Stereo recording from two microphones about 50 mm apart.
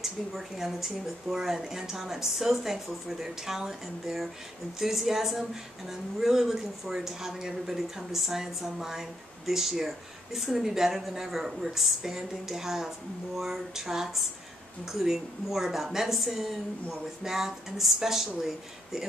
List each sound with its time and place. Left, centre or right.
0.0 s a woman's voice: centre